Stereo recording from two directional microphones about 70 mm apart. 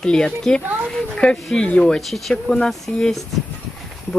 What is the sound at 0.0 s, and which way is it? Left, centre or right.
Speech, centre.